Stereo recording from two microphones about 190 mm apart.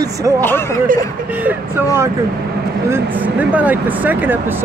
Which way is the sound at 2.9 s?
10° right (ahead or behind).